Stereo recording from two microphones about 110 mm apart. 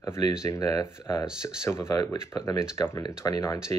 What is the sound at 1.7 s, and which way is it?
Speech, 25° left (ahead or behind).